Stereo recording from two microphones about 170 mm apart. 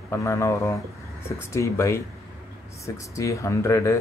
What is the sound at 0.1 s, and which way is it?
Mantra, 15° left (ahead or behind).